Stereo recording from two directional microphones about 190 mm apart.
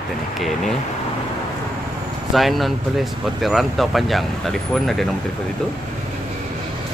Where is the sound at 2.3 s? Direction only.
Centre (ahead or behind).